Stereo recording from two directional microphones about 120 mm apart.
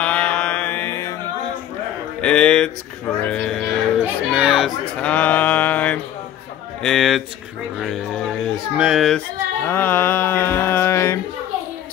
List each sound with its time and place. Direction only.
0.0 s mantra: 10° left (ahead or behind)
2.2 s speech: 10° left (ahead or behind)
4.0 s speech: 10° right (ahead or behind)
4.9 s mantra: 10° left (ahead or behind)
6.8 s speech: centre (ahead or behind)
8.7 s speech: 5° right (ahead or behind)
9.7 s music: 15° left (ahead or behind)